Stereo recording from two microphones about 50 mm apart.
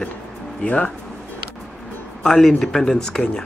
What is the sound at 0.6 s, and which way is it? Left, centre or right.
Speech, left.